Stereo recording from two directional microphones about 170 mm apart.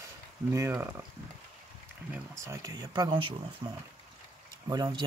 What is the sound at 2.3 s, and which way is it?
Speech, 20° right (ahead or behind).